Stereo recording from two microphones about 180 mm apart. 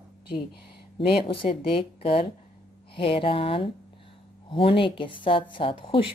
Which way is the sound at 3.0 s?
30° left (ahead or behind).